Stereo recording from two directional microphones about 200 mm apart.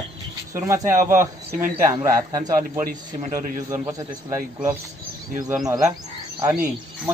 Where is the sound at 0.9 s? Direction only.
15° right (ahead or behind).